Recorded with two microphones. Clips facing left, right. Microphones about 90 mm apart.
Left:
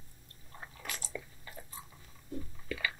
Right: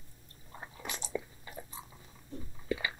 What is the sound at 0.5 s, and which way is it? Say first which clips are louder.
Biting: right 2 dB; 20° right (ahead or behind).